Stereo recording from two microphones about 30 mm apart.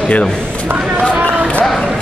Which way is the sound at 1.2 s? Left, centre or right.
Left.